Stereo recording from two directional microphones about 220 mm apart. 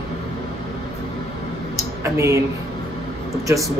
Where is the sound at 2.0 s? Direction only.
15° right (ahead or behind).